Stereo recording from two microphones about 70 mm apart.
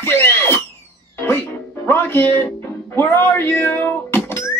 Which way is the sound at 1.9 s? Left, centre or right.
Left.